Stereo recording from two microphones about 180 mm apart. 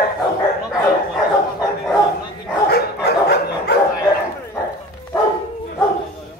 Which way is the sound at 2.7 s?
65° left (ahead or behind).